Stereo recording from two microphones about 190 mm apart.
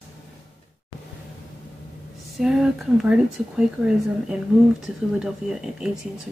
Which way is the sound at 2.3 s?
Centre (ahead or behind).